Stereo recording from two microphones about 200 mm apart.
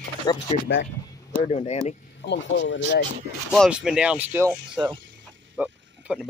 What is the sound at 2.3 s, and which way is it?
Speech, 65° left (ahead or behind).